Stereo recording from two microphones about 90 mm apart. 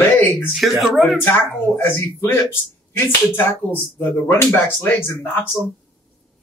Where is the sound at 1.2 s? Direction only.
25° left (ahead or behind).